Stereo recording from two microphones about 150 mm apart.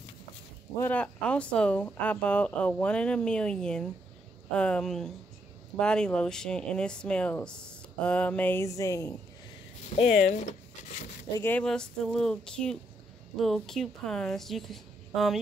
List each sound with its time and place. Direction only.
0.7 s a woman's voice: 10° left (ahead or behind)
10.1 s speech: 55° left (ahead or behind)
11.3 s a woman's voice: 15° left (ahead or behind)